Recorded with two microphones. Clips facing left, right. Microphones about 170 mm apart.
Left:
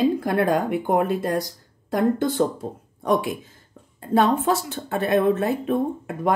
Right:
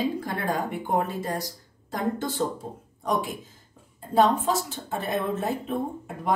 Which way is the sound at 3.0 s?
65° left (ahead or behind).